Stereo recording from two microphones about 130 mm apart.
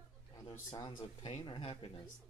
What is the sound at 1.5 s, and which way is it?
Speech, 45° left (ahead or behind).